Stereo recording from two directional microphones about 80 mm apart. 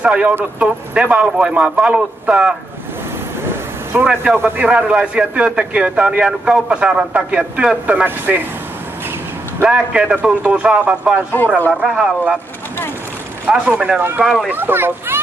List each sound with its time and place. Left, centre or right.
0.0 s a man's voice: centre
3.9 s a man's voice: centre
9.6 s a man's voice: centre
11.4 s speech: left
11.8 s speech: centre
13.5 s a man's voice: centre
13.9 s a child's voice: right